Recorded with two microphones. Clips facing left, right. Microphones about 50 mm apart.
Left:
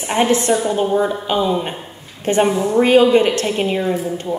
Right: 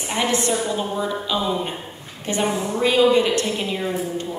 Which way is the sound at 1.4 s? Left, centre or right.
Left.